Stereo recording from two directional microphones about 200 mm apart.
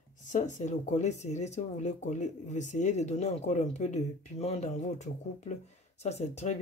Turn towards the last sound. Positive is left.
turn(degrees=35)  # may be behind; listen again after turning